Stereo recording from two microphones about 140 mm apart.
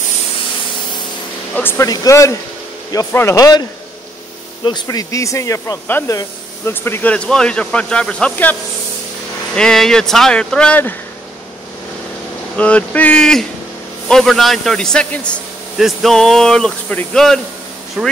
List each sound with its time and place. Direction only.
1.5 s speech: 15° left (ahead or behind)
4.6 s speech: 30° left (ahead or behind); by 8.5 s 10° left (ahead or behind)
9.6 s a man's voice: 5° left (ahead or behind)
12.5 s a man's voice: 10° left (ahead or behind)